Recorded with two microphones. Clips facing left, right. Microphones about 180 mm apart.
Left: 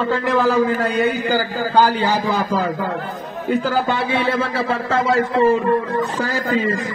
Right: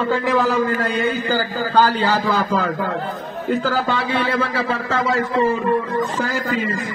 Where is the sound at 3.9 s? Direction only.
25° left (ahead or behind).